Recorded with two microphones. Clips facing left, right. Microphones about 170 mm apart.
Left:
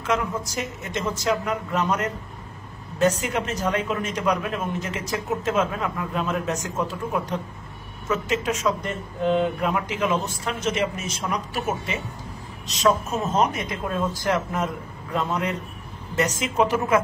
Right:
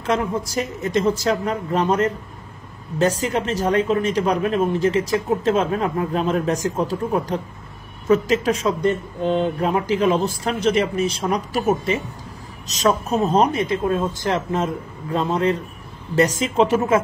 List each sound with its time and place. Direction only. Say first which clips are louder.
0.0 s speech: right 4 dB; 35° right (ahead or behind)